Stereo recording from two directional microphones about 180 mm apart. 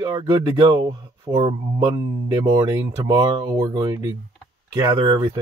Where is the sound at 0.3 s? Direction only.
20° right (ahead or behind).